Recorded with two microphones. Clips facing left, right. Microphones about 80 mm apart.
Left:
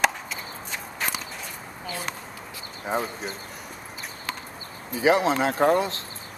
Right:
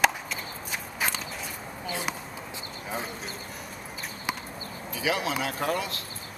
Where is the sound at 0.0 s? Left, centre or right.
Centre.